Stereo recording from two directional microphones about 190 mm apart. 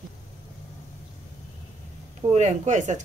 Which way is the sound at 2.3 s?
40° right (ahead or behind).